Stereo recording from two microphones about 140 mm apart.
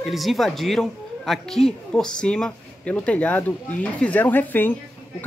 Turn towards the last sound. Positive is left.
turn(degrees=15)  # may be behind; listen again after turning